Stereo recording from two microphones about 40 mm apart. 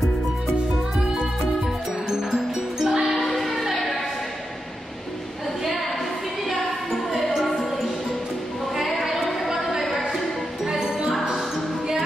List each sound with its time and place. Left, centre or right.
2.0 s music: centre
3.3 s music: centre
6.5 s music: centre
8.7 s a sound: centre
9.8 s music: centre
10.6 s music: centre